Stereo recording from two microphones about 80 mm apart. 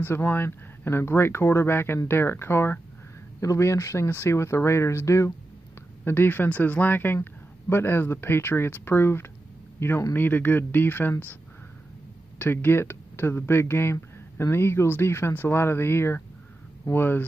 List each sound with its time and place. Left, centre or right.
0.0 s speech: left
6.0 s speech: left
12.4 s speech: left